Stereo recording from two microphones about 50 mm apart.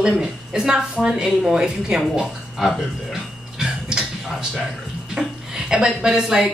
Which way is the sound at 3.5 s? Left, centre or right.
Centre.